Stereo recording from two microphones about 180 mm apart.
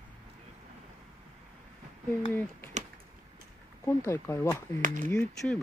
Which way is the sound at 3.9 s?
15° left (ahead or behind).